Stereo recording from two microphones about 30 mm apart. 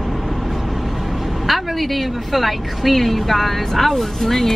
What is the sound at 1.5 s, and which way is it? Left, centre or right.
A woman's voice, centre.